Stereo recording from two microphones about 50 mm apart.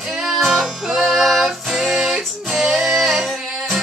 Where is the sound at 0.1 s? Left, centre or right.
Centre.